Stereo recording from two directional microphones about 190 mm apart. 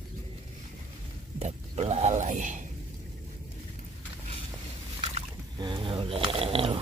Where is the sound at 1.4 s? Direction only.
35° right (ahead or behind).